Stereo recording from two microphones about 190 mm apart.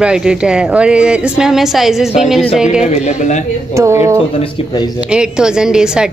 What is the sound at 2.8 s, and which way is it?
Speech, 35° left (ahead or behind).